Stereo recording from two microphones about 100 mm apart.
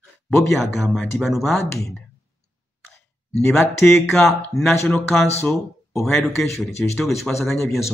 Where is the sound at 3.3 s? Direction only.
5° left (ahead or behind).